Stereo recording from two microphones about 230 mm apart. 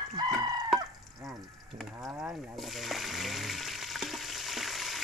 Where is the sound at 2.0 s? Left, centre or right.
Centre.